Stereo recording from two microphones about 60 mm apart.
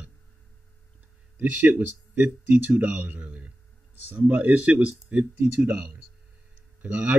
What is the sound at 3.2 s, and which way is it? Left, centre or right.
Speech, right.